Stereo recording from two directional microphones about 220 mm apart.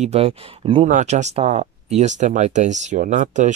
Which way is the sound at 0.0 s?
30° right (ahead or behind).